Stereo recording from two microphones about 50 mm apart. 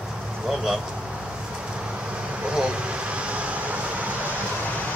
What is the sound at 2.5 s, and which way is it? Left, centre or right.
Vehicle, right.